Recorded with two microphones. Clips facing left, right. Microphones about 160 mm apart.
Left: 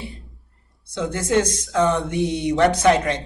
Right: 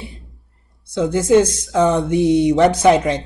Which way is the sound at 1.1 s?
15° right (ahead or behind).